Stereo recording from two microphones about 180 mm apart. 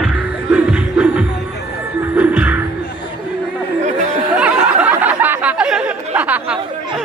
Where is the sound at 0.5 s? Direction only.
5° right (ahead or behind).